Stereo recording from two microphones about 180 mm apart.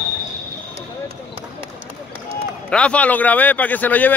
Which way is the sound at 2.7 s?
5° left (ahead or behind).